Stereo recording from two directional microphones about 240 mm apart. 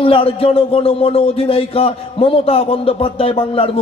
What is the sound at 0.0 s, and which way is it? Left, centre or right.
A man's voice, left.